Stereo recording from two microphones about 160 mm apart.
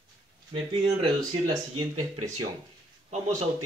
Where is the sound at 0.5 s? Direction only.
30° right (ahead or behind).